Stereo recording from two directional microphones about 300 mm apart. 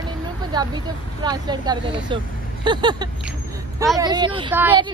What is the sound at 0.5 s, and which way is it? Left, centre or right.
A woman's voice, centre.